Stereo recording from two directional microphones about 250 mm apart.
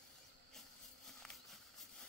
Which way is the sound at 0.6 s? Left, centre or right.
Centre.